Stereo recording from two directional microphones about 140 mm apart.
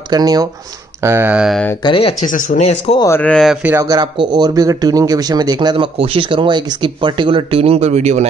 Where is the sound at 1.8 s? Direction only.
35° left (ahead or behind).